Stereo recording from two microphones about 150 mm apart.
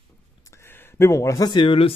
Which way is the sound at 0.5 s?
15° left (ahead or behind).